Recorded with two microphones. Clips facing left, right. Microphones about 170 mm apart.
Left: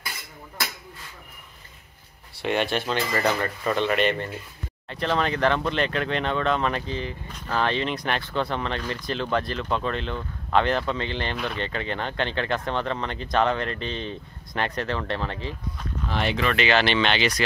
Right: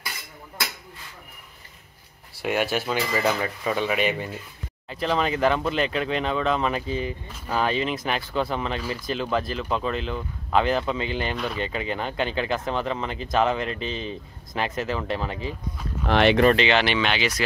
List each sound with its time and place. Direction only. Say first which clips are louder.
2.4 s speech: even; 5° right (ahead or behind)
16.1 s speech: right 8 dB; 80° right
16.5 s speech: right 1 dB; 20° right (ahead or behind)
16.8 s speech: left 1 dB; 10° right (ahead or behind)